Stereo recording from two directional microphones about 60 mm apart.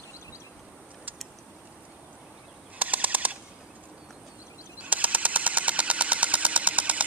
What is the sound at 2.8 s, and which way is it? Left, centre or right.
Machine gun, right.